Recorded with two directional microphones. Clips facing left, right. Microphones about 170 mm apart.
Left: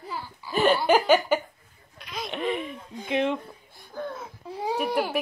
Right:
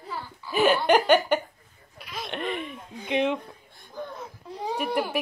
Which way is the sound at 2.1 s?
Centre (ahead or behind).